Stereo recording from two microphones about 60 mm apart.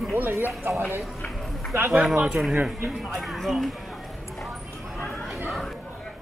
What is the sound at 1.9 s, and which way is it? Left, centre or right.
Speech, centre.